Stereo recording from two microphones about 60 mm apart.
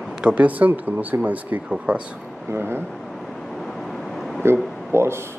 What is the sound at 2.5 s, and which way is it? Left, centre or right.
Speech, right.